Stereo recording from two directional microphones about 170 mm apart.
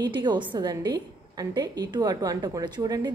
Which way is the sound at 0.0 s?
25° right (ahead or behind).